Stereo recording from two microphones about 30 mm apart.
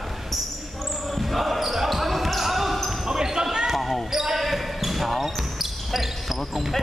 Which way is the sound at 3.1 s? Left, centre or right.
Right.